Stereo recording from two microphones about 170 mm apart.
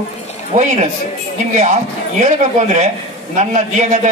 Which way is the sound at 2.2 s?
45° right (ahead or behind).